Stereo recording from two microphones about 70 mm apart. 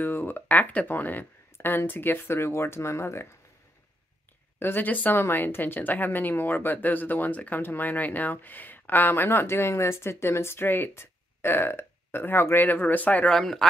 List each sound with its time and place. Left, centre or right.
0.0 s speech: left
4.6 s speech: left
13.3 s speech: centre